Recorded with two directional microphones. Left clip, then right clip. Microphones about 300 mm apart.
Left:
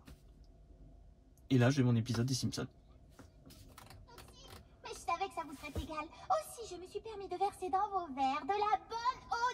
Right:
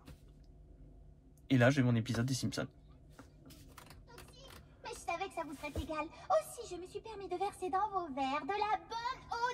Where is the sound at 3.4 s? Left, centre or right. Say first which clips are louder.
Left 1 dB; left.